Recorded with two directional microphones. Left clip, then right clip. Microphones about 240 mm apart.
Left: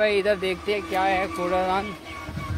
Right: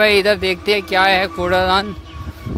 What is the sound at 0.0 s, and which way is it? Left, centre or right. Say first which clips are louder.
Speech: right 8 dB; right.